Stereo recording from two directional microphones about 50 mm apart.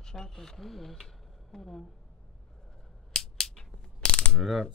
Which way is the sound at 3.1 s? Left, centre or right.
Centre.